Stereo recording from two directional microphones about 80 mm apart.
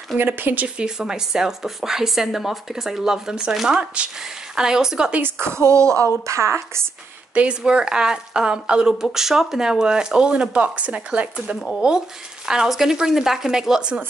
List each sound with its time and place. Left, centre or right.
0.3 s speech: right
0.7 s speech: centre
5.2 s speech: right
7.3 s speech: centre